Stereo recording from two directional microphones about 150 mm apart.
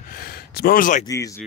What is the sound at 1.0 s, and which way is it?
Speech, 20° left (ahead or behind).